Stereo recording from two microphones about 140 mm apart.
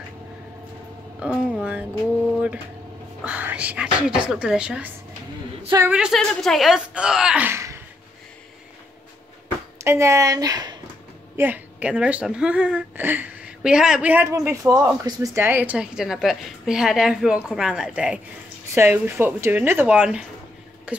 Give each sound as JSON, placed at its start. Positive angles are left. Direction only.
{"t": 1.2, "sound": "speech", "side_deg": -10}
{"t": 3.3, "sound": "a woman's voice", "side_deg": -10}
{"t": 9.8, "sound": "a woman's voice", "side_deg": -20}
{"t": 11.3, "sound": "a woman's voice", "side_deg": -10}